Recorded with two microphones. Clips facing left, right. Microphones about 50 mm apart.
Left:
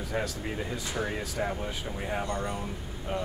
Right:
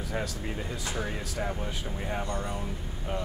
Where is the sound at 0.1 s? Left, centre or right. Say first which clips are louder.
Left 2 dB; centre.